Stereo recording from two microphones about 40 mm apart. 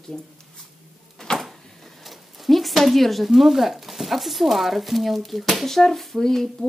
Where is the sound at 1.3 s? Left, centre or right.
Centre.